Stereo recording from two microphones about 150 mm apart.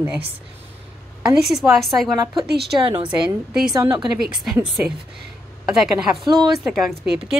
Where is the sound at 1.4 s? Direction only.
Centre (ahead or behind).